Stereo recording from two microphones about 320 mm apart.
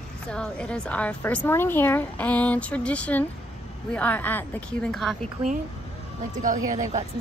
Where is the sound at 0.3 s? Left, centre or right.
Centre.